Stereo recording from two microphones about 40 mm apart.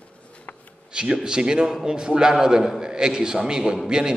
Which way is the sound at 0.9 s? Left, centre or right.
Right.